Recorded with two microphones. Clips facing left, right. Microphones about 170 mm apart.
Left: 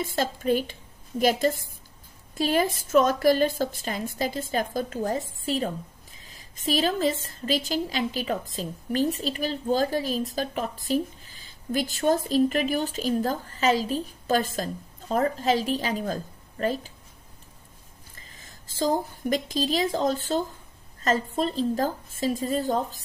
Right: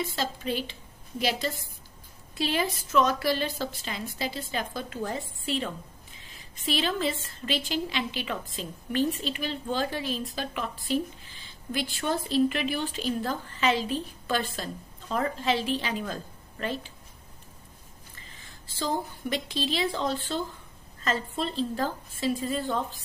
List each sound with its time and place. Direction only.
0.0 s a woman's voice: 50° left (ahead or behind)
18.1 s a woman's voice: 40° left (ahead or behind)